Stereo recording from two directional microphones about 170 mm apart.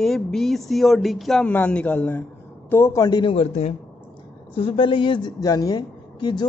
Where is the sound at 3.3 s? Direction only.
40° left (ahead or behind).